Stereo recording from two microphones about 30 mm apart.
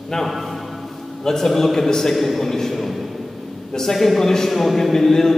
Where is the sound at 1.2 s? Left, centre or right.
Centre.